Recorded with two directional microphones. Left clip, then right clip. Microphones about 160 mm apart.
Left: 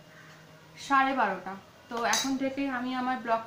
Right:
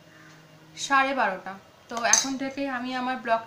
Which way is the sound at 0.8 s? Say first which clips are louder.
Right 2 dB; 20° right (ahead or behind).